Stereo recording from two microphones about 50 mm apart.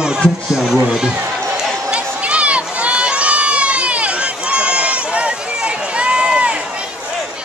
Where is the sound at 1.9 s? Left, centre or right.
Right.